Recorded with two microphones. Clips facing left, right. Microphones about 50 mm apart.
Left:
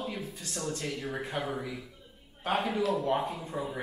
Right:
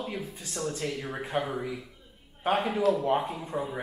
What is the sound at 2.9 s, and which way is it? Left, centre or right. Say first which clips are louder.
Speech: right 4 dB; centre.